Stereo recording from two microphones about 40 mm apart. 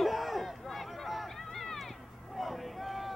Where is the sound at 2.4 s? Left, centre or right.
Centre.